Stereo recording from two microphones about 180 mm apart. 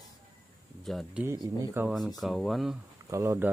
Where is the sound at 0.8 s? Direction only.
Centre (ahead or behind).